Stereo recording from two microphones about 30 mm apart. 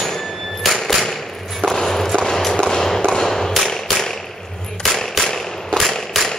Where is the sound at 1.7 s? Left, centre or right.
Centre.